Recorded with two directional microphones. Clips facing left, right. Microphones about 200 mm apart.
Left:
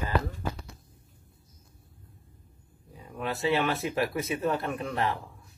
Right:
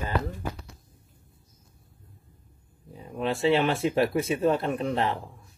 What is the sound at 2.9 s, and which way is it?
Speech, 25° right (ahead or behind).